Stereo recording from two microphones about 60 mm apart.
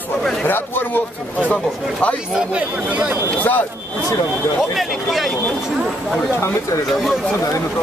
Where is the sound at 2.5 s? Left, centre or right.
Centre.